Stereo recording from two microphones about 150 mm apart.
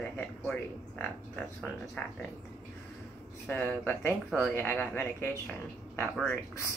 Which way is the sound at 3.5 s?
10° left (ahead or behind).